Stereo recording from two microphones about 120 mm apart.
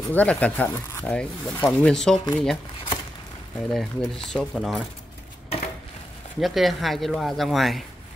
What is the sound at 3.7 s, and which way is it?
Speech, centre (ahead or behind).